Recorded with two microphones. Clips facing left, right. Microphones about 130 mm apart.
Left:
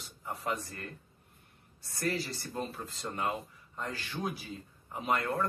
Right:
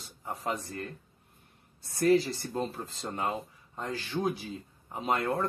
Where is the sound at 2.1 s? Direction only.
25° right (ahead or behind).